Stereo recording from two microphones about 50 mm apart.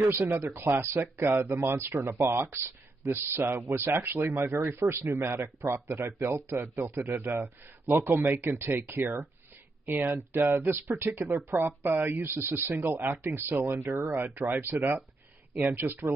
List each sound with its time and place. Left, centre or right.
0.0 s a man's voice: right